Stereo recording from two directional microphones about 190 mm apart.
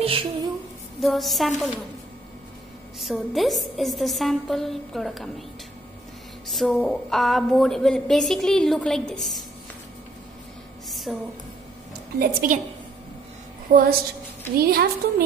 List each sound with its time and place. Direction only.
0.0 s a sound: 30° right (ahead or behind)
1.0 s a woman's voice: centre (ahead or behind)
3.0 s a woman's voice: centre (ahead or behind)
6.5 s a woman's voice: centre (ahead or behind)
10.9 s a sound: centre (ahead or behind)
12.2 s a woman's voice: 50° right (ahead or behind)
13.7 s a woman's voice: 45° right (ahead or behind)